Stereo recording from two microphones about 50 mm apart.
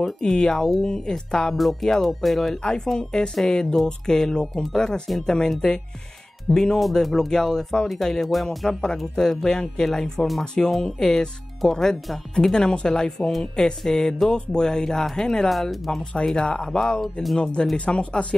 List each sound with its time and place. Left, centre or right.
0.0 s speech: centre
1.5 s speech: centre
8.5 s speech: centre
16.0 s speech: left
17.0 s speech: centre
17.4 s speech: left